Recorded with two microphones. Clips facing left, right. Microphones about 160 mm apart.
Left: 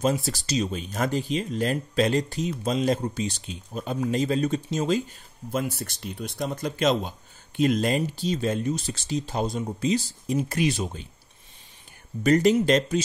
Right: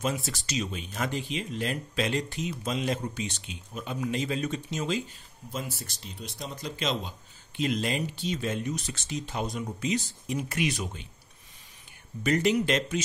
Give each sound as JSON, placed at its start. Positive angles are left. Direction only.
{"t": 0.0, "sound": "speech", "side_deg": 35}
{"t": 5.5, "sound": "speech", "side_deg": 60}
{"t": 12.2, "sound": "speech", "side_deg": 40}